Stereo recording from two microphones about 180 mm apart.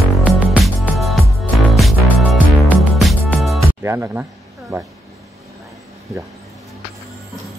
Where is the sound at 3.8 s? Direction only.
15° right (ahead or behind).